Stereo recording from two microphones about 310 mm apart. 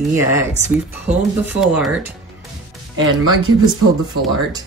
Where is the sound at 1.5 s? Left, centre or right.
Centre.